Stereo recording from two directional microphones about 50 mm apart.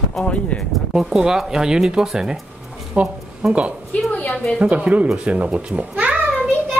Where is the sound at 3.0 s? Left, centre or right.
Right.